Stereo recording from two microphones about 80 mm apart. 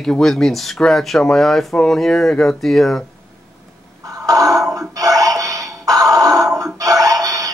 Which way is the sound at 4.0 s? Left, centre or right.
Right.